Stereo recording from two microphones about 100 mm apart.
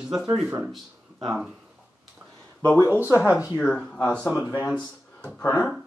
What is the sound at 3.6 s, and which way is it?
Speech, 5° left (ahead or behind).